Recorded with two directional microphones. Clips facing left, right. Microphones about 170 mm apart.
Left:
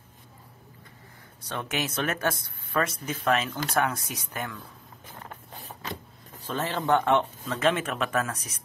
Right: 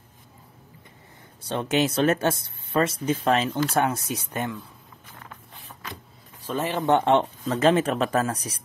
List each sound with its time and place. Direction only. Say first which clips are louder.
1.4 s speech: right 8 dB; 30° right (ahead or behind)
5.3 s a sound: left 3 dB; 35° left (ahead or behind)
6.4 s speech: right 4 dB; 15° right (ahead or behind)
7.2 s speech: right 5 dB; 35° right (ahead or behind)